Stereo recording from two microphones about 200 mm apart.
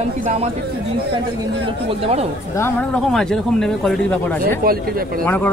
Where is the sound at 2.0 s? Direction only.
30° right (ahead or behind).